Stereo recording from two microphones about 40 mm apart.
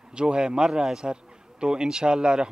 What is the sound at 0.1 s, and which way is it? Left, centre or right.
Speech, right.